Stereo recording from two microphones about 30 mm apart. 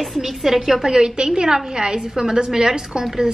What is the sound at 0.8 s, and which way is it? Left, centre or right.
A woman's voice, right.